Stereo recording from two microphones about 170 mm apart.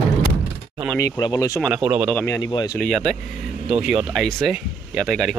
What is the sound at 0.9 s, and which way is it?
Speech, 20° left (ahead or behind).